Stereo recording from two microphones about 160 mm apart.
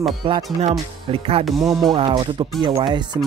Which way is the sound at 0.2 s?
35° right (ahead or behind).